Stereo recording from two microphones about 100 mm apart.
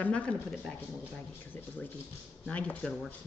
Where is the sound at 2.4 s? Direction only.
15° left (ahead or behind).